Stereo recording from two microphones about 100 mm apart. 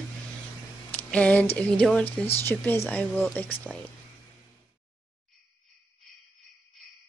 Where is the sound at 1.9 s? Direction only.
15° left (ahead or behind).